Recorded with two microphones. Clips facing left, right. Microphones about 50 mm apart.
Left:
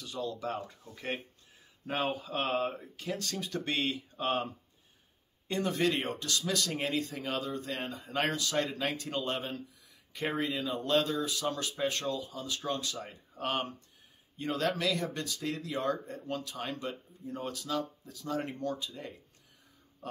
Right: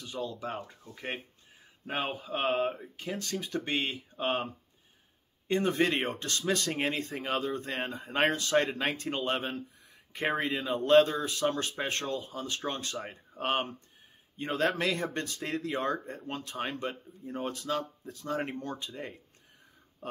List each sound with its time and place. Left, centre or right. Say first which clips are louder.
0.0 s speech: even; right
5.5 s speech: right 3 dB; right